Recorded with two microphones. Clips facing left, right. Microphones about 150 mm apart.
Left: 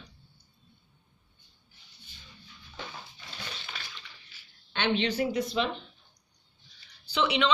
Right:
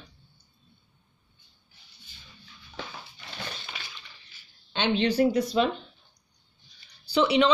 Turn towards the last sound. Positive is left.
turn(degrees=-35)  # may be behind; listen again after turning